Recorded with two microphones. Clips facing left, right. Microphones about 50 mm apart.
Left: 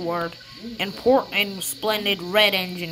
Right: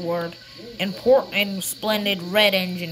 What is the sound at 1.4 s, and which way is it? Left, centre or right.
Speech, left.